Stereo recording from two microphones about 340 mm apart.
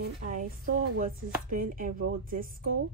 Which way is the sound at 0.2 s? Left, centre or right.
Right.